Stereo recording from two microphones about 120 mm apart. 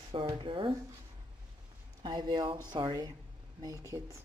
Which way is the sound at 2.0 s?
40° right (ahead or behind).